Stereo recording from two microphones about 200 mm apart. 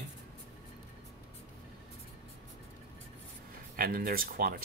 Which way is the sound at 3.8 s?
45° right (ahead or behind).